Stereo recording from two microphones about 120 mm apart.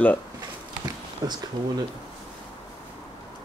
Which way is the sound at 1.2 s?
30° right (ahead or behind).